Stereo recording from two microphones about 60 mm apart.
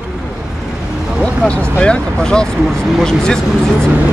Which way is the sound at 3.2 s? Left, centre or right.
Centre.